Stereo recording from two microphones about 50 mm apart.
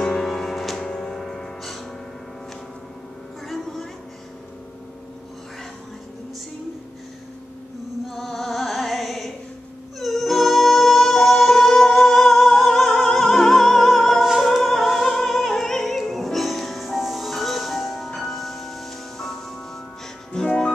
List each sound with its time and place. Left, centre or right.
0.0 s music: centre
8.1 s music: centre
20.3 s music: centre